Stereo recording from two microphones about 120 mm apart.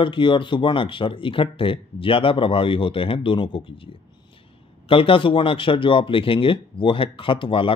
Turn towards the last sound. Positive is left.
turn(degrees=45)  # may be behind; listen again after turning